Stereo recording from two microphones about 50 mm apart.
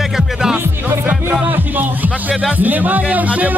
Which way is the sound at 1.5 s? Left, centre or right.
Right.